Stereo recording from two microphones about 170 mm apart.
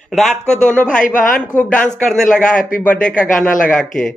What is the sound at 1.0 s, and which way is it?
Speech, 50° left (ahead or behind).